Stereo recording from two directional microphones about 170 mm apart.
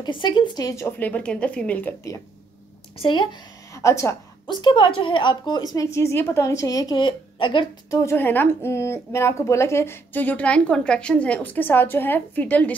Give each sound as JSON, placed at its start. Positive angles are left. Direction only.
{"t": 0.0, "sound": "speech", "side_deg": 25}
{"t": 3.0, "sound": "a woman's voice", "side_deg": 30}
{"t": 3.7, "sound": "a woman's voice", "side_deg": 15}
{"t": 8.0, "sound": "speech", "side_deg": 15}